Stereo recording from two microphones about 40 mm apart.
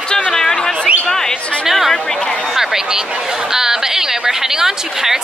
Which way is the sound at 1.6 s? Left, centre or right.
Centre.